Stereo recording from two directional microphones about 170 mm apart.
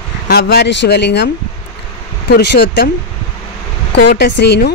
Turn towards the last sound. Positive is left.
turn(degrees=70)  # may be behind; listen again after turning